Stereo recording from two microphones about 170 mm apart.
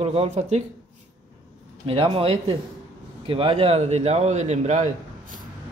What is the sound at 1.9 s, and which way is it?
Speech, 35° right (ahead or behind).